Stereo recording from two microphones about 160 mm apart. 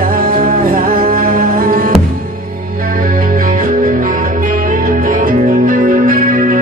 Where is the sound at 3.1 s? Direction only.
60° right (ahead or behind).